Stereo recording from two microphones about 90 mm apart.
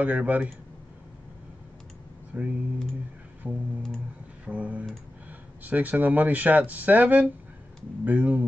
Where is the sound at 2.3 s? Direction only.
15° right (ahead or behind).